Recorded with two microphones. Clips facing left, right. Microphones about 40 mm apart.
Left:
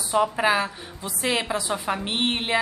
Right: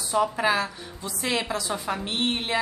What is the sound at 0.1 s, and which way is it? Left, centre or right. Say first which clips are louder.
A woman's voice: left 2 dB; centre.